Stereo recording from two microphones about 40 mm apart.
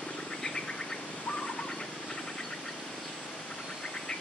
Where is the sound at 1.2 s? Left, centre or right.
Left.